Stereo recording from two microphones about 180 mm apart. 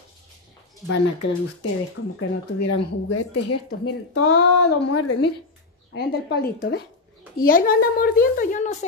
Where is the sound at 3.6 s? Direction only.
65° left (ahead or behind); by 8.8 s 40° left (ahead or behind).